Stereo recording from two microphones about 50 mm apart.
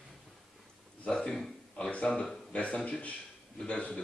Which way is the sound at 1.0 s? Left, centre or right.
Centre.